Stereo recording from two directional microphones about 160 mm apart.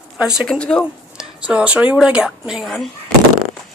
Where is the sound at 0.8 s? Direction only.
5° right (ahead or behind).